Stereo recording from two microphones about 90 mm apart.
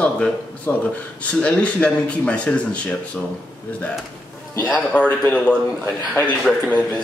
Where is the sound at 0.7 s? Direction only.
25° left (ahead or behind).